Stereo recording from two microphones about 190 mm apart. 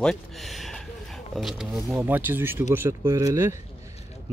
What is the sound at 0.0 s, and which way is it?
Speech, centre (ahead or behind).